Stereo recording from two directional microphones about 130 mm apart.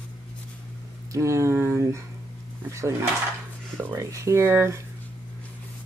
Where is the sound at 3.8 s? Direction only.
25° right (ahead or behind).